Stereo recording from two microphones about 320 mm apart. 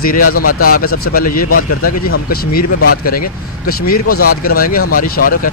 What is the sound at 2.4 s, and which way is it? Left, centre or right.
Speech, left.